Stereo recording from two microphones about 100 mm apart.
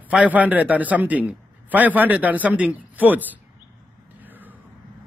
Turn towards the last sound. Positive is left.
turn(degrees=-20)  # may be behind; listen again after turning